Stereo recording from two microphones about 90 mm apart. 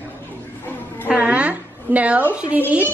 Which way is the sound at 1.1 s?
15° right (ahead or behind).